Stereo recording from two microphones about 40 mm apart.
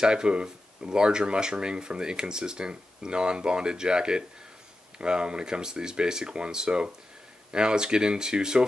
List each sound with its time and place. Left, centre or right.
0.0 s speech: right